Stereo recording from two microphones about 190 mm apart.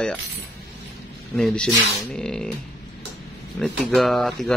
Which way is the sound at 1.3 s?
5° left (ahead or behind).